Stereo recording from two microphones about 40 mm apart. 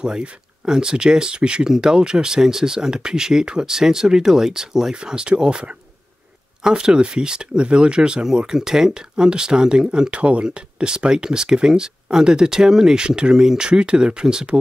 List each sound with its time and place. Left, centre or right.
0.0 s speech: centre